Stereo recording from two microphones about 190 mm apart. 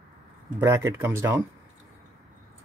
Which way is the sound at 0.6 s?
15° right (ahead or behind).